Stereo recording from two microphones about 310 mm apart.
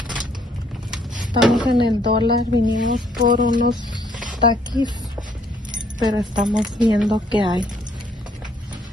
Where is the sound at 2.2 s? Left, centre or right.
Right.